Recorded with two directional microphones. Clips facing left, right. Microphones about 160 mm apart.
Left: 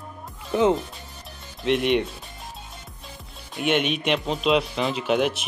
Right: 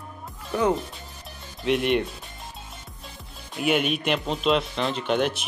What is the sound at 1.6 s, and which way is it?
Speech, centre (ahead or behind).